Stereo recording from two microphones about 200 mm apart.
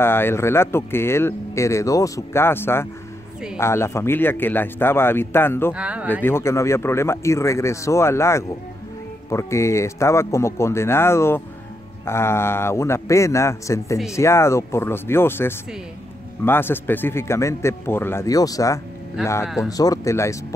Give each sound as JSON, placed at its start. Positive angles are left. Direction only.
{"t": 0.0, "sound": "speech", "side_deg": 10}
{"t": 5.7, "sound": "speech", "side_deg": -5}
{"t": 6.2, "sound": "speech", "side_deg": 15}
{"t": 19.4, "sound": "speech", "side_deg": -5}
{"t": 19.8, "sound": "speech", "side_deg": 15}